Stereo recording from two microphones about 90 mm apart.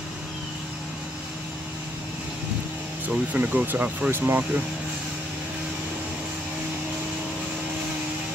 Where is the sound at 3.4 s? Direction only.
20° right (ahead or behind).